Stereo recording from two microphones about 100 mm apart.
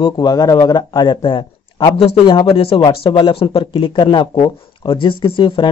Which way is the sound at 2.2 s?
60° left (ahead or behind).